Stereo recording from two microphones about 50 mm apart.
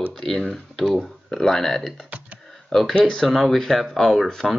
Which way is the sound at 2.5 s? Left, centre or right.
Centre.